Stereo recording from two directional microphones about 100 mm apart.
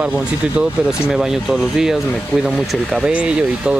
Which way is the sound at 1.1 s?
5° right (ahead or behind).